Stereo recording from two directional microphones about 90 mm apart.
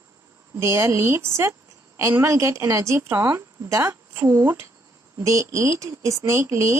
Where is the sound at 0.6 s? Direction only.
30° right (ahead or behind).